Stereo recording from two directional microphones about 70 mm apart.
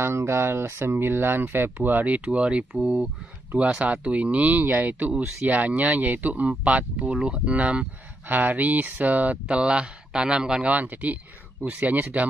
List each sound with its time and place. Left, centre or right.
0.0 s speech: right